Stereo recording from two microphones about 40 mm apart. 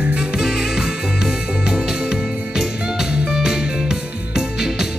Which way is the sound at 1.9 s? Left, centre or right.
Centre.